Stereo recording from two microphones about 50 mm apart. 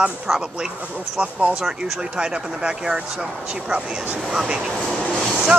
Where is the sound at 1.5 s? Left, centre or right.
Centre.